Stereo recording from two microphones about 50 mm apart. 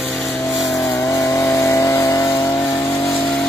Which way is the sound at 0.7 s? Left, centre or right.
Left.